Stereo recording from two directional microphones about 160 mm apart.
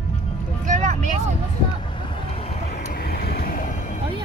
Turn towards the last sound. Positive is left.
turn(degrees=60)  # may be behind; listen again after turning